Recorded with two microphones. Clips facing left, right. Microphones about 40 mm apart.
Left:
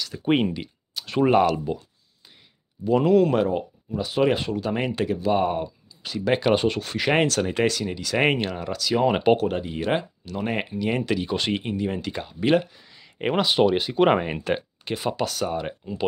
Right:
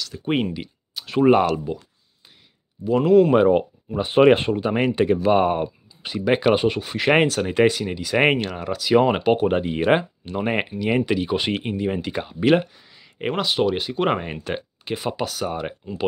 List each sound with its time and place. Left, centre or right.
0.0 s speech: centre
2.8 s speech: centre
3.3 s speech: right
4.6 s speech: right
6.2 s speech: centre
9.4 s speech: right
12.7 s speech: centre